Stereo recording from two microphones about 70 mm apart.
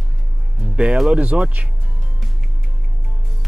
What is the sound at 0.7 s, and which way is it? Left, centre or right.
Speech, centre.